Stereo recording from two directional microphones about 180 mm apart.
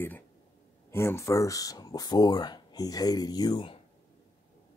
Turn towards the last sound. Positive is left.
turn(degrees=25)  # may be behind; listen again after turning